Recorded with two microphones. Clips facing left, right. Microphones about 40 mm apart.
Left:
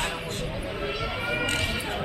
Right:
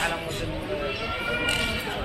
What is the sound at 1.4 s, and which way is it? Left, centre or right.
Speech, right.